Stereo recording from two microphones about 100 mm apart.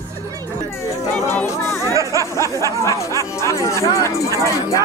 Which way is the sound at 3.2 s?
30° left (ahead or behind).